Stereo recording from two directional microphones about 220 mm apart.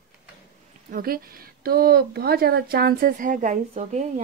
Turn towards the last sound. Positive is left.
turn(degrees=-30)  # may be behind; listen again after turning